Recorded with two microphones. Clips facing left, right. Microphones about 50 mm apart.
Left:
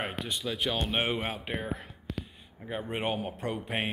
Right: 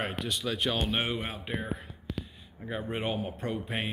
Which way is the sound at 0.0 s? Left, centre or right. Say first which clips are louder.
Right 1 dB; centre.